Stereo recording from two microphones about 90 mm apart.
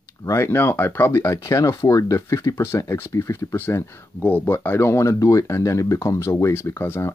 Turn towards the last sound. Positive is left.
turn(degrees=25)  # may be behind; listen again after turning